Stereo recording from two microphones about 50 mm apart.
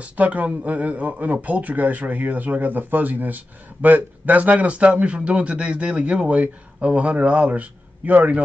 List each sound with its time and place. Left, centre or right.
0.0 s speech: right